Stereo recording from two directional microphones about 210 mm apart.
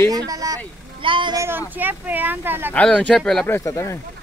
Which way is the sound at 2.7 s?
5° left (ahead or behind).